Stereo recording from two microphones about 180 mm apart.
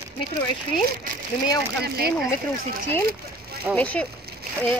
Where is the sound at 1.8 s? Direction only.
60° right (ahead or behind).